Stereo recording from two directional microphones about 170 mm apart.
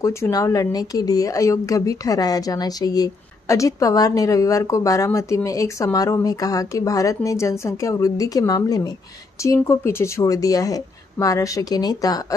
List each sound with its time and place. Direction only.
0.0 s speech: 20° left (ahead or behind)